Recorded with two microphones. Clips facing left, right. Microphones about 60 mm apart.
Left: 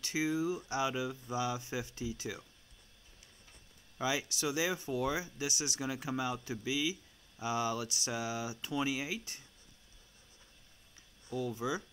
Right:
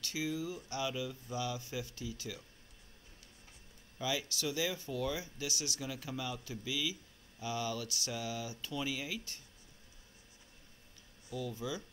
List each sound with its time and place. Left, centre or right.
0.0 s speech: left
4.0 s speech: centre
11.2 s speech: left